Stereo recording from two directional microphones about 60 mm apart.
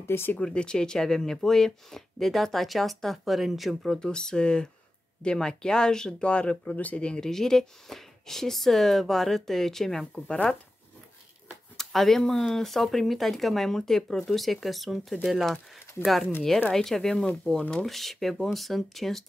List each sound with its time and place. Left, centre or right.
0.0 s speech: left
0.4 s speech: centre
10.1 s speech: centre
11.7 s speech: centre
16.7 s speech: centre